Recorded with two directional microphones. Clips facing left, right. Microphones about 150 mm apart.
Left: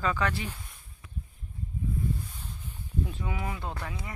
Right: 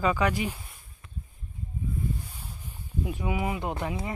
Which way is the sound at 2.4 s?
15° right (ahead or behind).